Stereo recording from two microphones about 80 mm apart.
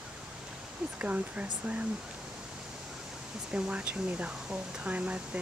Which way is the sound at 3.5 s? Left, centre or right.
Centre.